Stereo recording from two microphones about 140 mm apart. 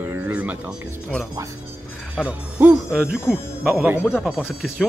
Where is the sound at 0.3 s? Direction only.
10° right (ahead or behind).